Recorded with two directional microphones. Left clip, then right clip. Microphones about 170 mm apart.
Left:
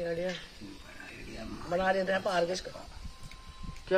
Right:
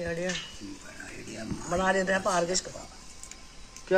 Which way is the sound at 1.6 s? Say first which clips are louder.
Right 2 dB; 40° left (ahead or behind).